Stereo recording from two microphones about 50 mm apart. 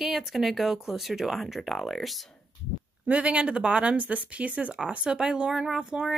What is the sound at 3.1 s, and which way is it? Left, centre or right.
Speech, right.